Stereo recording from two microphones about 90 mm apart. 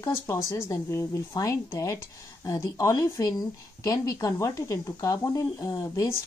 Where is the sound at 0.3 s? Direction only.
30° left (ahead or behind).